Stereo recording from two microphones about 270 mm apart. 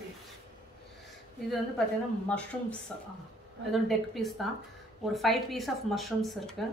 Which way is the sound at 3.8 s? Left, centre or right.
Centre.